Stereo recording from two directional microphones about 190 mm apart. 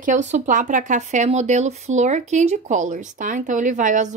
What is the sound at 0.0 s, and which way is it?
A woman's voice, 40° right (ahead or behind).